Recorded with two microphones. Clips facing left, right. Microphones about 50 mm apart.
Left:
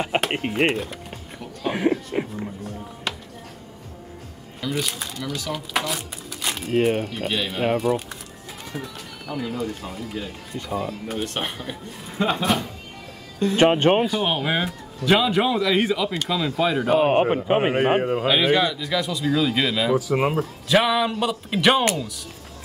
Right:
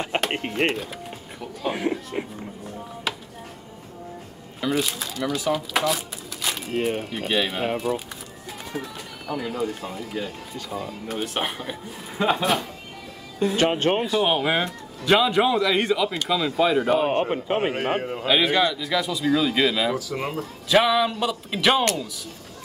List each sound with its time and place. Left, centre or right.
0.0 s speech: centre
1.4 s a sound: centre
2.1 s music: centre
3.1 s chopping: centre
4.6 s speech: centre
7.1 s speech: centre
13.6 s a man's voice: left
14.1 s speech: centre
17.0 s a man's voice: centre
18.2 s speech: centre
20.0 s a man's voice: left
20.6 s speech: centre